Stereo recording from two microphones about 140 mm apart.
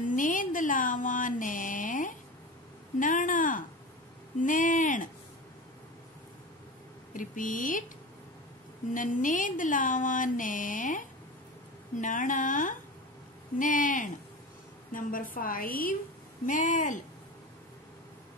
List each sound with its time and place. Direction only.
0.0 s a sound: 70° left (ahead or behind)
3.0 s speech: 70° left (ahead or behind)
7.2 s speech: 70° left (ahead or behind)
8.9 s a woman's voice: 70° left (ahead or behind); by 16.0 s 90° left
16.4 s speech: 65° left (ahead or behind)